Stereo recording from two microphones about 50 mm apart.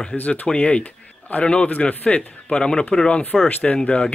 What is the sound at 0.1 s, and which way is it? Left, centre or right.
A man's voice, left.